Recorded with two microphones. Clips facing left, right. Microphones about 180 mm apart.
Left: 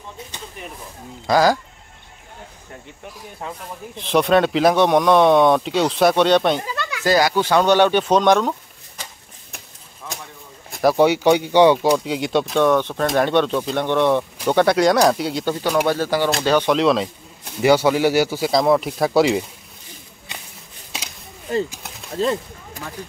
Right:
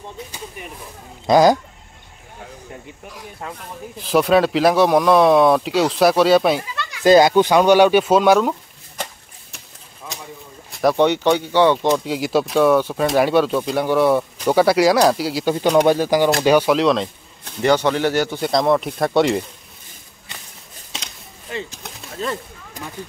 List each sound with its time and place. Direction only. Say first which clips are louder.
1.2 s speech: right 3 dB; 20° right (ahead or behind)
3.3 s speech: left 1 dB; centre (ahead or behind)
7.0 s speech: right 6 dB; 20° right (ahead or behind)
10.8 s speech: left 1 dB; 5° left (ahead or behind)
12.0 s speech: right 1 dB; centre (ahead or behind)
15.6 s speech: right 5 dB; 20° right (ahead or behind); by 19.4 s centre (ahead or behind)
21.5 s speech: left 7 dB; 40° left (ahead or behind)